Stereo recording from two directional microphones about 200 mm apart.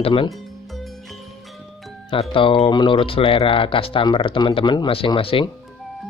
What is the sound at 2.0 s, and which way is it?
Speech, 25° left (ahead or behind).